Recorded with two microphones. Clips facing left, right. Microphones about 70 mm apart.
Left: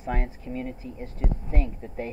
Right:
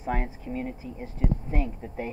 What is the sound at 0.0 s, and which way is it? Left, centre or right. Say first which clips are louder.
Speech: right 1 dB; centre.